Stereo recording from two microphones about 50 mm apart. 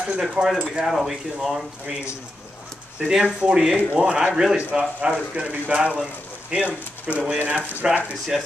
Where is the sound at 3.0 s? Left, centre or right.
Centre.